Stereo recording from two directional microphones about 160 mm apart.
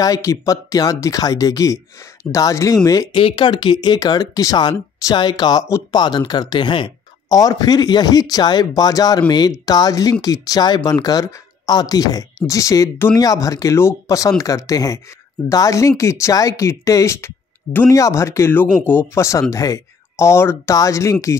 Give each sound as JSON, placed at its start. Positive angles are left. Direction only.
{"t": 0.0, "sound": "speech", "side_deg": 20}